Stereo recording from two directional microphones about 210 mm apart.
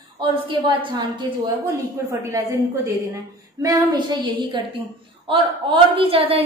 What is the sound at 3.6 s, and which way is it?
A woman's voice, 15° right (ahead or behind).